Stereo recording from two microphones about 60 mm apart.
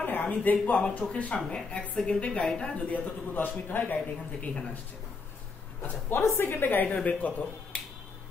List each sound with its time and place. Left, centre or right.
0.0 s a sound: left
0.7 s speech: centre
2.9 s a man's voice: left
5.8 s a woman's voice: left